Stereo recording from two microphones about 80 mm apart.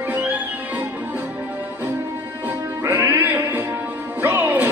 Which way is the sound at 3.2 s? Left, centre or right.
Right.